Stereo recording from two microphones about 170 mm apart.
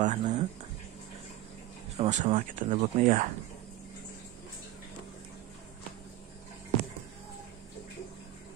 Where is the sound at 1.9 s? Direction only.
40° right (ahead or behind).